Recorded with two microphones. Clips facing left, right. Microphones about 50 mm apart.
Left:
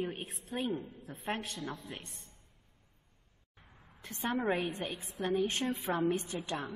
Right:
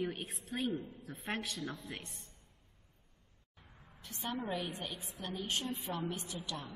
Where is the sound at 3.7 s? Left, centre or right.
Centre.